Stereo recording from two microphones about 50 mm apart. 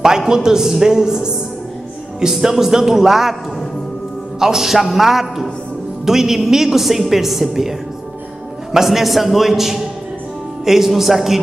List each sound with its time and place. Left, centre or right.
0.0 s a man's voice: centre
4.4 s a woman's voice: centre
8.7 s a woman's voice: centre